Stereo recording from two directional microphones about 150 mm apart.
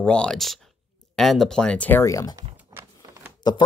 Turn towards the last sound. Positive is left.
turn(degrees=30)  # may be behind; listen again after turning